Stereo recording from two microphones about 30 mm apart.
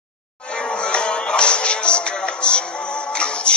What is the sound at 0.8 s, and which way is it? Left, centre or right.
Music, left.